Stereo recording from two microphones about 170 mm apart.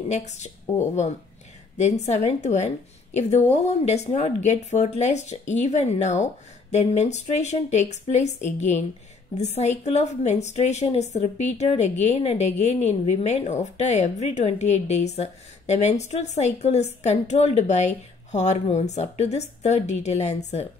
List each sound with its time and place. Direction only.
0.1 s a woman's voice: 40° left (ahead or behind)